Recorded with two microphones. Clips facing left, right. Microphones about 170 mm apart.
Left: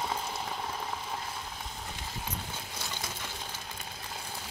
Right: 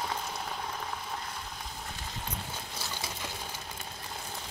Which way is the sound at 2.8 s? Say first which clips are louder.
Even; 5° right (ahead or behind).